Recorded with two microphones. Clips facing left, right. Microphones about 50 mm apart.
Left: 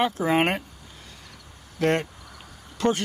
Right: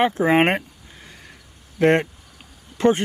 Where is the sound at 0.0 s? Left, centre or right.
Right.